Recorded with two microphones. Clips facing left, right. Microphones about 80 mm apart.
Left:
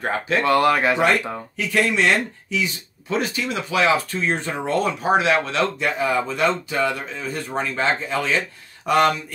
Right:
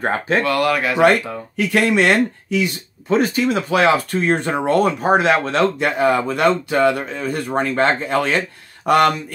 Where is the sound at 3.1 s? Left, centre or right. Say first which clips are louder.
Right 7 dB; right.